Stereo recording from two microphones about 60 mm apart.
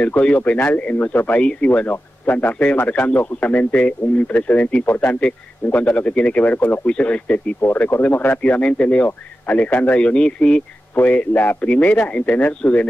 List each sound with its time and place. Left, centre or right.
0.0 s a man's voice: left
1.7 s a man's voice: left
6.9 s a man's voice: left